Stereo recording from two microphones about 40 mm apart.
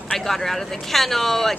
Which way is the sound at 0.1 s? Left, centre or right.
Centre.